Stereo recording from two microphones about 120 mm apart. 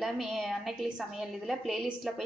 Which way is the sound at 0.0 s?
Centre (ahead or behind).